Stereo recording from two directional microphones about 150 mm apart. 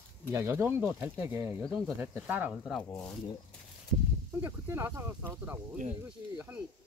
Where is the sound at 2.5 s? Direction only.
Centre (ahead or behind).